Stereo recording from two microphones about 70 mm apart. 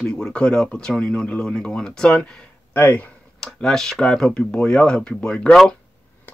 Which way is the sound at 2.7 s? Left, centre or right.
Left.